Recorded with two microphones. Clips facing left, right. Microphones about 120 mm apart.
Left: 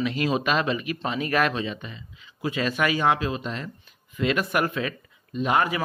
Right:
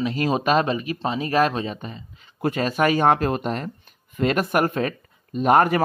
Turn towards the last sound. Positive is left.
turn(degrees=-50)  # may be behind; listen again after turning